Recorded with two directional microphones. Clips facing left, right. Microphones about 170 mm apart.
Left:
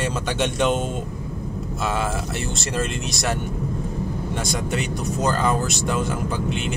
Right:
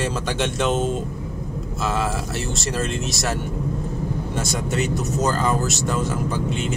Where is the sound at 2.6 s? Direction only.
Centre (ahead or behind).